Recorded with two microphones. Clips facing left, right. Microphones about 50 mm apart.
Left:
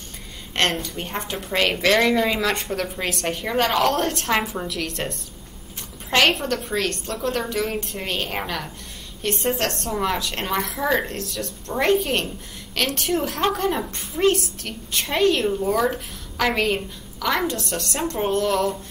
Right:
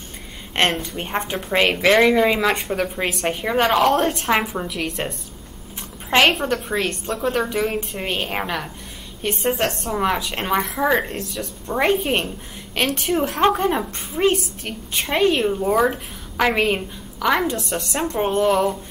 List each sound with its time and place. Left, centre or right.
0.8 s a woman's voice: right